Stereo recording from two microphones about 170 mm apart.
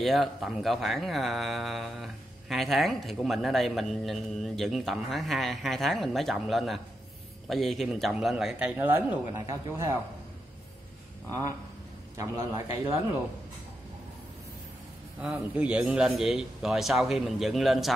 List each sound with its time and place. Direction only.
0.0 s speech: centre (ahead or behind)
11.2 s a man's voice: 20° right (ahead or behind)
15.1 s speech: 5° right (ahead or behind)